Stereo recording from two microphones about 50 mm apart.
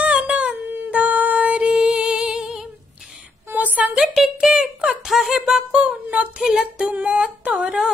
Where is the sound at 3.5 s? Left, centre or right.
Right.